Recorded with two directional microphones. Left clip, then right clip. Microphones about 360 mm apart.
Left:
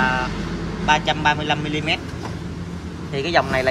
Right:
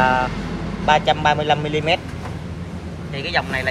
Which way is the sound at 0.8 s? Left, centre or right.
Centre.